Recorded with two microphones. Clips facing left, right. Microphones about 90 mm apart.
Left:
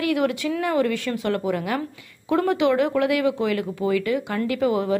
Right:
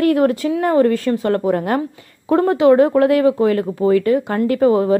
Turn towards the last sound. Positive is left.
turn(degrees=-35)  # may be behind; listen again after turning